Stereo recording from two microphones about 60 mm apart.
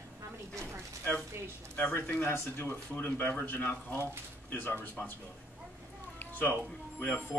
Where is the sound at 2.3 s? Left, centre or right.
Left.